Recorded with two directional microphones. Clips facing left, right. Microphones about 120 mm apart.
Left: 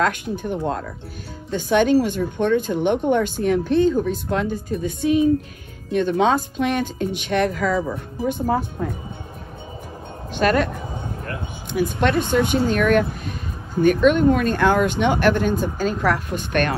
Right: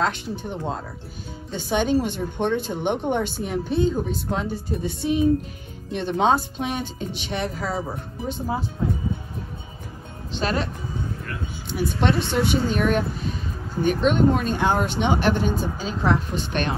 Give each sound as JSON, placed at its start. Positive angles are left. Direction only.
{"t": 0.0, "sound": "a woman's voice", "side_deg": 50}
{"t": 10.3, "sound": "speech", "side_deg": 55}
{"t": 12.0, "sound": "a woman's voice", "side_deg": 50}